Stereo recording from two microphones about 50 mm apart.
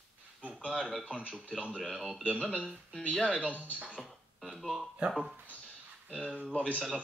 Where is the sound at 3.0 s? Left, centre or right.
Left.